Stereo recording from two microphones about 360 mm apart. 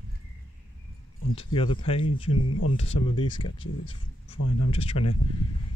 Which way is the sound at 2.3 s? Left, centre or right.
Left.